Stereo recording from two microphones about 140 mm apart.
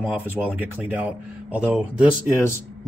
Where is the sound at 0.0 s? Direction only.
10° right (ahead or behind).